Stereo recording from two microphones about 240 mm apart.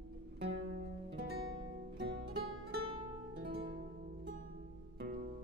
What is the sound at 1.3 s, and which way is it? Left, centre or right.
Music, right.